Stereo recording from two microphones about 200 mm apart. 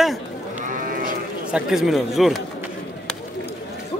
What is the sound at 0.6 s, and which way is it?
Sheep, 40° right (ahead or behind).